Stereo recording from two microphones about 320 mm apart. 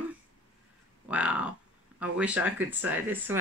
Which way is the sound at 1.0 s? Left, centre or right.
Centre.